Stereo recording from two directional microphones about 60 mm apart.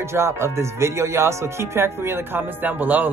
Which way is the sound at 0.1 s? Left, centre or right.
Right.